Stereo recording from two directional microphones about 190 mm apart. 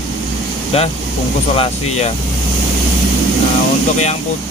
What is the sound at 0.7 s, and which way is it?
Speech, 30° left (ahead or behind).